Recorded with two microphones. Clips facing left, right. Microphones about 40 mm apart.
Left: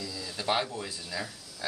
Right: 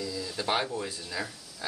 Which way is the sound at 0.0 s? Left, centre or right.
Centre.